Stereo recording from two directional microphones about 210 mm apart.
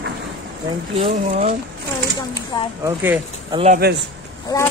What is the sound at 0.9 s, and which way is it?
Speech, 30° right (ahead or behind).